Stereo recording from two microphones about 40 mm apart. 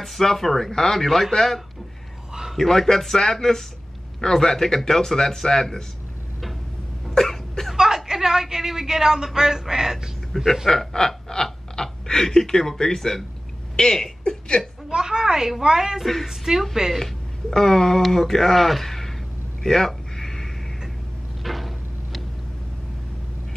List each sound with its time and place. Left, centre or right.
0.0 s a man's voice: centre
7.1 s cough: centre
7.7 s a woman's voice: centre
10.3 s a man's voice: centre
10.7 s speech: centre
13.7 s a sound: centre
14.9 s speech: centre
17.0 s a man's voice: centre
19.6 s a sound: centre
21.4 s a sound: centre